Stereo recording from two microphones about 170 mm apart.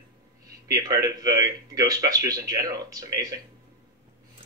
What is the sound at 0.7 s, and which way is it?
Speech, 20° right (ahead or behind).